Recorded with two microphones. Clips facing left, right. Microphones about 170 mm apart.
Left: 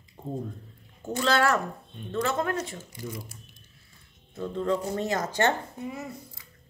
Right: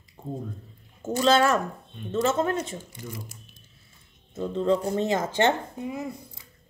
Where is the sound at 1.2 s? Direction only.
20° right (ahead or behind).